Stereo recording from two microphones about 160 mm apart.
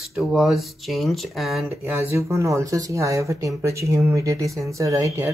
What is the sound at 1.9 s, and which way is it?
Speech, 15° right (ahead or behind).